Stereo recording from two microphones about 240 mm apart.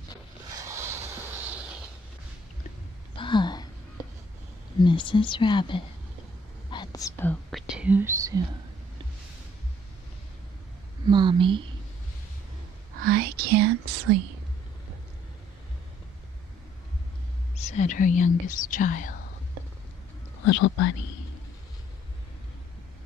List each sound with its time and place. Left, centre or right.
0.5 s a sound: centre
3.2 s a sound: centre
4.7 s speech: centre
6.7 s whispering: centre
11.1 s speech: centre
13.0 s whispering: right
17.6 s speech: left
20.4 s speech: left